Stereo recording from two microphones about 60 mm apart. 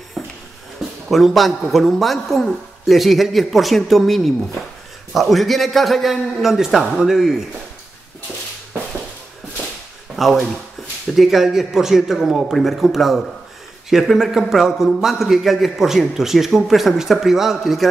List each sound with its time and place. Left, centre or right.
0.2 s a sound: centre
1.1 s a man's voice: centre
10.1 s a man's voice: centre